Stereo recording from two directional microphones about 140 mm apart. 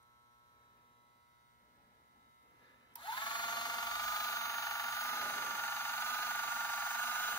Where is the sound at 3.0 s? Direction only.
35° left (ahead or behind).